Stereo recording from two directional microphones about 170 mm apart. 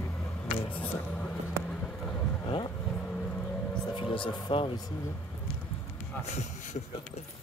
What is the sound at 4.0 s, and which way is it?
Speech, 30° left (ahead or behind).